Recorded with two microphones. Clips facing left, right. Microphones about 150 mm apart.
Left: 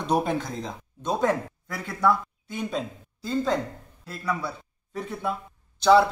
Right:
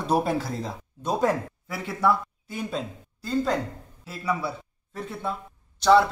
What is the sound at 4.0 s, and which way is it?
A man's voice, 5° right (ahead or behind).